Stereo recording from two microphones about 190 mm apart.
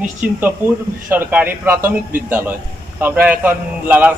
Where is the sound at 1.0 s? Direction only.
10° right (ahead or behind).